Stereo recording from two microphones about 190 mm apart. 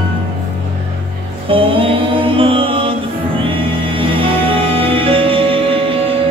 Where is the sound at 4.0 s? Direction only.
30° right (ahead or behind).